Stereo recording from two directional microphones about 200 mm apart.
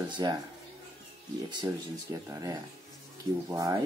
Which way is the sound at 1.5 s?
15° right (ahead or behind).